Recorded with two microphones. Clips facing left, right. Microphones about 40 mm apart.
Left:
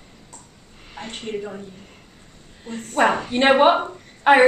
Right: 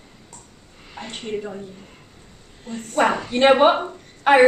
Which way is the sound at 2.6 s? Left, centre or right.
Centre.